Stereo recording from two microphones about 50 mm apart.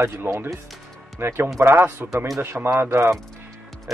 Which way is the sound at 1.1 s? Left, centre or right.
Right.